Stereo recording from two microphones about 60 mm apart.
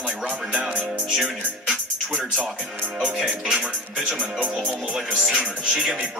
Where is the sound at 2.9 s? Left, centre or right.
Centre.